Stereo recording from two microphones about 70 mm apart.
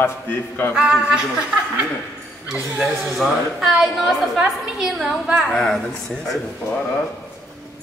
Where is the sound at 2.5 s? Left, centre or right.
Centre.